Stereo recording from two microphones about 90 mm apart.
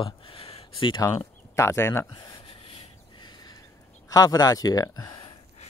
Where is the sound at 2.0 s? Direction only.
60° left (ahead or behind).